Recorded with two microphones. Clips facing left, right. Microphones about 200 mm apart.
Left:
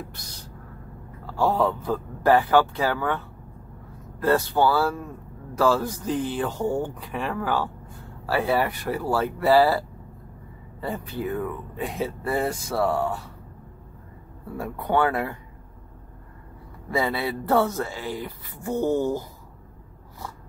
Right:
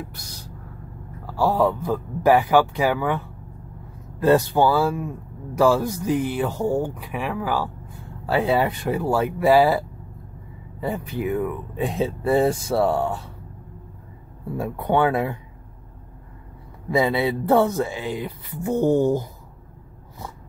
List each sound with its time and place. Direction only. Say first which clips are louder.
1.2 s speech: right 2 dB; 5° right (ahead or behind)
8.3 s speech: right 3 dB; 20° right (ahead or behind)
14.6 s speech: right 3 dB; 20° right (ahead or behind)
16.9 s speech: right 5 dB; 20° right (ahead or behind)